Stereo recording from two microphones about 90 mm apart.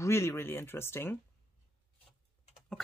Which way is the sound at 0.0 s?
30° left (ahead or behind).